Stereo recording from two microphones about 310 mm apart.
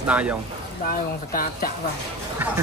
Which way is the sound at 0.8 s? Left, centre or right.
Left.